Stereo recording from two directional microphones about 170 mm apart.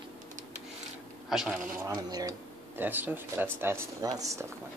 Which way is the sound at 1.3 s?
Centre (ahead or behind).